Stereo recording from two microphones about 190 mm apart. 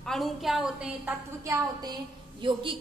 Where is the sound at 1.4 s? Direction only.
20° right (ahead or behind).